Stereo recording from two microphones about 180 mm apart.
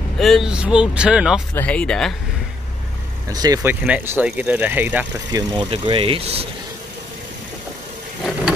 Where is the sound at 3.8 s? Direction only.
5° right (ahead or behind).